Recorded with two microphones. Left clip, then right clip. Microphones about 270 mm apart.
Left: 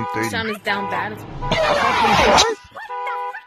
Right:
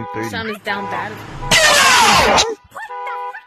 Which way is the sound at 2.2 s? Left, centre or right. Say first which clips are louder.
Right 1 dB; centre.